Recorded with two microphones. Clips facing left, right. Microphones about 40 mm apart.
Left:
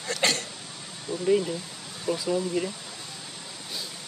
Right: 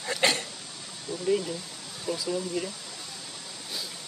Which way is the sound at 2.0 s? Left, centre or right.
Left.